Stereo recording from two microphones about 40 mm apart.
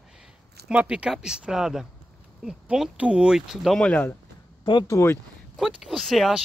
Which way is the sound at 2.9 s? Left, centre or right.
Right.